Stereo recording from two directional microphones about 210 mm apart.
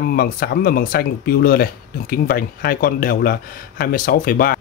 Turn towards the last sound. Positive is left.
turn(degrees=45)  # may be behind; listen again after turning